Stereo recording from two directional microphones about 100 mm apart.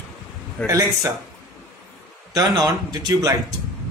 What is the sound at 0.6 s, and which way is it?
Speech, 35° right (ahead or behind).